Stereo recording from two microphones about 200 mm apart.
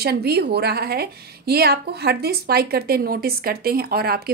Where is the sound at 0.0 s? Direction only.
55° right (ahead or behind).